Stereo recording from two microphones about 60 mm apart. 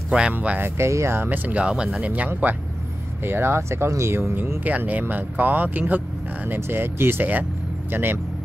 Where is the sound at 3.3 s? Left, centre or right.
Right.